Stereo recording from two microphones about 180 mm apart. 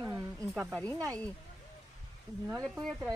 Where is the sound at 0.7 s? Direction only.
5° left (ahead or behind).